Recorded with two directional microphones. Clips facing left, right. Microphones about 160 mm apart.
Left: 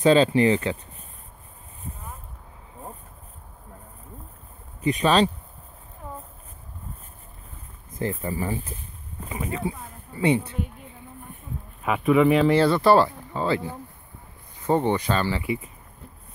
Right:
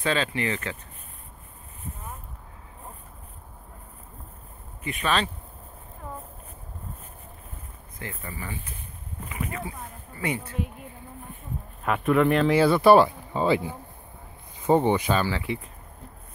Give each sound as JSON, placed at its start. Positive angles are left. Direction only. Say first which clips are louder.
{"t": 0.0, "sound": "speech", "louder": "left 9 dB", "side_deg": 35}
{"t": 4.8, "sound": "speech", "louder": "left 7 dB", "side_deg": 35}
{"t": 8.0, "sound": "speech", "louder": "left 10 dB", "side_deg": 35}
{"t": 9.3, "sound": "speech", "louder": "left 5 dB", "side_deg": 25}
{"t": 11.8, "sound": "speech", "louder": "left 3 dB", "side_deg": 0}
{"t": 15.3, "sound": "speech", "louder": "left 2 dB", "side_deg": 5}